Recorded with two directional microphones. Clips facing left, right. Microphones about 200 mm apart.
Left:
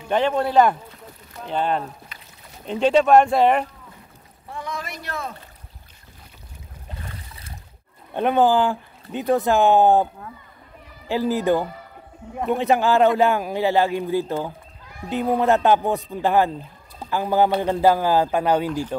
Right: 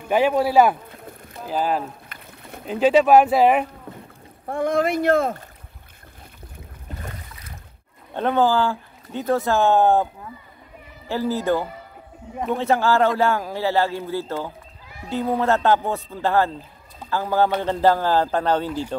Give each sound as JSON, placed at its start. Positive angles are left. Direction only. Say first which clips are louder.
{"t": 0.1, "sound": "speech", "louder": "right 2 dB", "side_deg": -10}
{"t": 2.0, "sound": "rowboat", "louder": "right 5 dB", "side_deg": -55}
{"t": 2.6, "sound": "speech", "louder": "right 1 dB", "side_deg": -5}
{"t": 4.5, "sound": "speech", "louder": "right 12 dB", "side_deg": -55}
{"t": 8.1, "sound": "speech", "louder": "left 2 dB", "side_deg": 15}
{"t": 11.1, "sound": "speech", "louder": "left 2 dB", "side_deg": 15}